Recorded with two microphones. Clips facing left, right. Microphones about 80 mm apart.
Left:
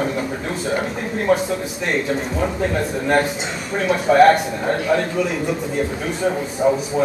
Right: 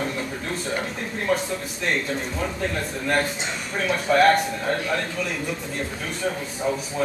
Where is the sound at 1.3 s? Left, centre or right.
Centre.